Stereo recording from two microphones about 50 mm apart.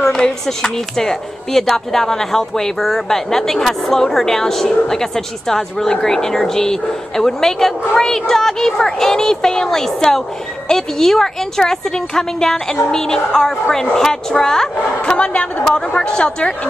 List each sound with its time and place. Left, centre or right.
0.0 s a woman's voice: centre